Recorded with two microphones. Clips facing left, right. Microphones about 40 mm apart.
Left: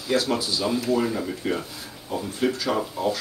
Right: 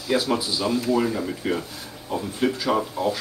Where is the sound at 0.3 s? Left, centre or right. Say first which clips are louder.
Right 1 dB; centre.